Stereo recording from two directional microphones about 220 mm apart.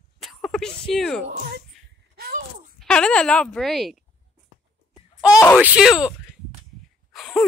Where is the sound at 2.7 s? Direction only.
5° left (ahead or behind).